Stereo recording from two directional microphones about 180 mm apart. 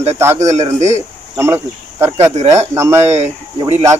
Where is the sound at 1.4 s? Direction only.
15° right (ahead or behind).